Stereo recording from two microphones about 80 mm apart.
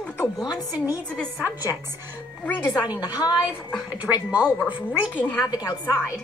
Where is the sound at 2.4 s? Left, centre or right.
Left.